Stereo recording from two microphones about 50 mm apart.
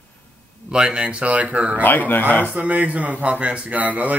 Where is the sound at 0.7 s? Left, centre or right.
Centre.